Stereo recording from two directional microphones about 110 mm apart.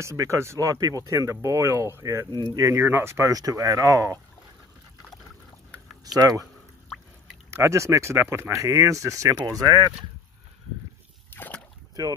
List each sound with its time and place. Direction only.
0.0 s speech: 30° right (ahead or behind)
2.3 s speech: 35° right (ahead or behind)
2.8 s speech: 20° right (ahead or behind)
6.1 s speech: 35° right (ahead or behind)
7.5 s speech: 25° right (ahead or behind)
11.3 s a sound: 15° left (ahead or behind)